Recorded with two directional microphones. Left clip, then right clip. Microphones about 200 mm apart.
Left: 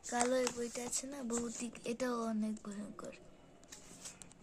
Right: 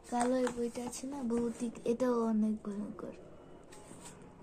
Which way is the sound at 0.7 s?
20° left (ahead or behind).